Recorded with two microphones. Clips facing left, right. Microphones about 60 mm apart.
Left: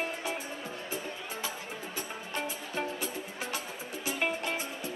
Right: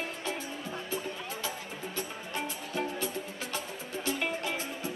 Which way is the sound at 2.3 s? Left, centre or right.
Centre.